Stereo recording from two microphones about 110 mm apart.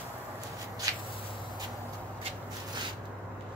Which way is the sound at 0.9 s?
35° right (ahead or behind).